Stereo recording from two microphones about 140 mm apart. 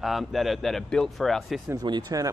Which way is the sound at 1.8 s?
30° right (ahead or behind).